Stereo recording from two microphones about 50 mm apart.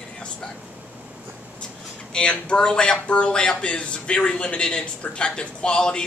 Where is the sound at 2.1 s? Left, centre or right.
Centre.